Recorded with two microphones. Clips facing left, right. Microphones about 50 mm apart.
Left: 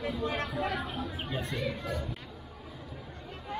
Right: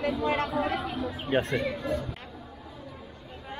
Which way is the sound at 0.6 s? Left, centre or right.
Right.